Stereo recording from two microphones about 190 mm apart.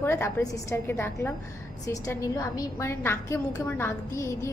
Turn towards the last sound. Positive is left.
turn(degrees=15)  # may be behind; listen again after turning